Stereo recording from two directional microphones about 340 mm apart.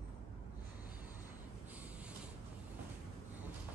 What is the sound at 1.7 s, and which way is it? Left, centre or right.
Mechanisms, centre.